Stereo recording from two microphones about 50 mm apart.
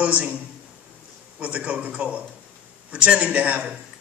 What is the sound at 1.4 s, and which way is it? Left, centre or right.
Speech, right.